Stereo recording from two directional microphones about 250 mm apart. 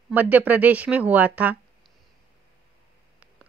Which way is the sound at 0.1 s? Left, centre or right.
Centre.